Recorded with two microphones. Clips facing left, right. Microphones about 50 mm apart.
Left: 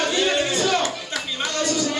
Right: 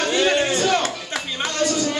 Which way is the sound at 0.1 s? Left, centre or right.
Right.